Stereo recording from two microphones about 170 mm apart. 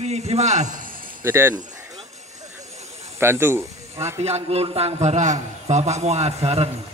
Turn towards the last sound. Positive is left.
turn(degrees=-35)  # may be behind; listen again after turning